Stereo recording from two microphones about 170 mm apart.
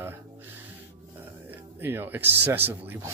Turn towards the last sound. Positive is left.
turn(degrees=-10)  # may be behind; listen again after turning